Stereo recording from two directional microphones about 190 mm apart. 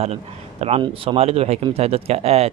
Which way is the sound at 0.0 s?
35° right (ahead or behind).